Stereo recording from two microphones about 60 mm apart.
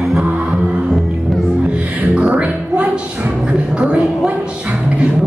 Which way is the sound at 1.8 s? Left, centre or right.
Centre.